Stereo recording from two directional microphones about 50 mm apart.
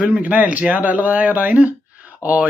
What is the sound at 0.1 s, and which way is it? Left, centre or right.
Speech, right.